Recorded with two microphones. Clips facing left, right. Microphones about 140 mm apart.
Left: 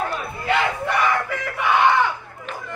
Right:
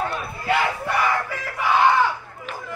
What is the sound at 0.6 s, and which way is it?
Crowd, 20° left (ahead or behind).